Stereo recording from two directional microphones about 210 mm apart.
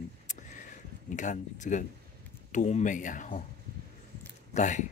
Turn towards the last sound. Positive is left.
turn(degrees=35)  # may be behind; listen again after turning